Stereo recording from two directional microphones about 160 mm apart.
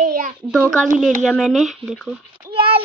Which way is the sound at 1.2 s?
Centre (ahead or behind).